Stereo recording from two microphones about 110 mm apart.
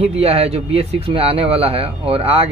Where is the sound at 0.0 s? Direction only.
65° right (ahead or behind).